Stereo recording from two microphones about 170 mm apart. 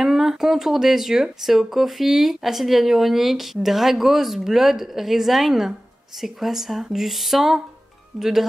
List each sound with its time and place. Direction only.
0.0 s speech: centre (ahead or behind)